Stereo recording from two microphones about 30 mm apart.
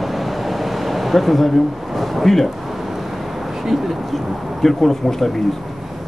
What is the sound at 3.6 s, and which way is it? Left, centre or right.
Speech, centre.